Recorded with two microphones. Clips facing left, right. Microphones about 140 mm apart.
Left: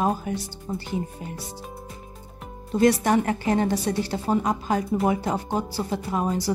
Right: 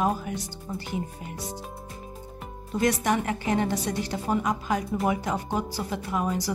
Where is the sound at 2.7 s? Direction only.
35° left (ahead or behind).